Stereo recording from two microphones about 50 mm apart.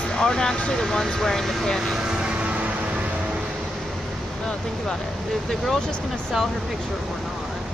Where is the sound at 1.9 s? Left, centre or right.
Centre.